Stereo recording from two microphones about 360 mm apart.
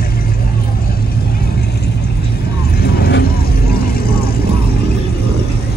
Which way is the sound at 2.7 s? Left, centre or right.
Left.